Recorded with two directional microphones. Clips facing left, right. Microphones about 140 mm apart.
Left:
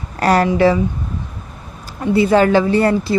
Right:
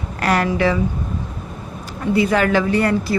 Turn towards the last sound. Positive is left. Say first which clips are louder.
# left 3 dB
turn(degrees=30)  # may be behind; listen again after turning